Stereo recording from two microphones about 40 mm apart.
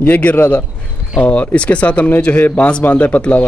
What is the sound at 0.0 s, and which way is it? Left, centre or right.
Speech, left.